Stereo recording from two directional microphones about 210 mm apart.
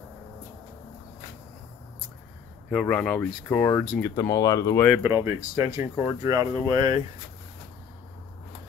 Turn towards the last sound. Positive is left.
turn(degrees=-20)  # may be behind; listen again after turning